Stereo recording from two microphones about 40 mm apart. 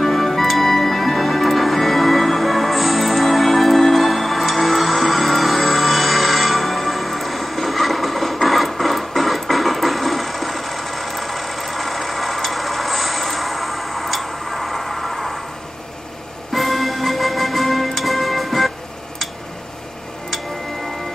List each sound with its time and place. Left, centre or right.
0.0 s music: centre
16.5 s music: centre